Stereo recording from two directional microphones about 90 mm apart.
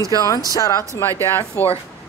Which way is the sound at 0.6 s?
40° left (ahead or behind).